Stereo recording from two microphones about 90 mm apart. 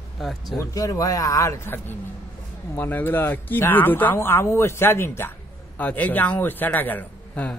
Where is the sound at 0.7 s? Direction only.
40° left (ahead or behind).